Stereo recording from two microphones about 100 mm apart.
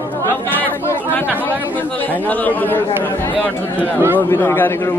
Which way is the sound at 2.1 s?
15° left (ahead or behind).